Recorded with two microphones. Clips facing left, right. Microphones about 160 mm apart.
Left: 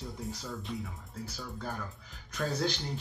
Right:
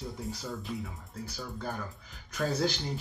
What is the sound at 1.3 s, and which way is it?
Speech, centre (ahead or behind).